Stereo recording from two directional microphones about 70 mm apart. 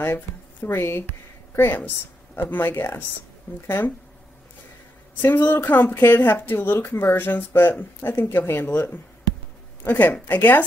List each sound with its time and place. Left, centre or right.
0.0 s speech: left
5.5 s speech: left